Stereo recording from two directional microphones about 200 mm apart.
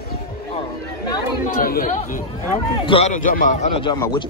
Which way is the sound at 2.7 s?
25° left (ahead or behind).